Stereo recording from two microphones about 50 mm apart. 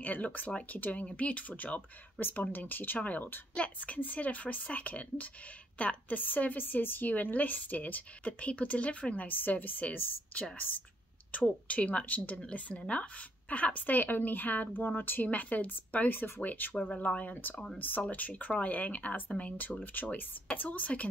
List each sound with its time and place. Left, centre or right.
0.0 s a woman's voice: left
16.7 s a woman's voice: left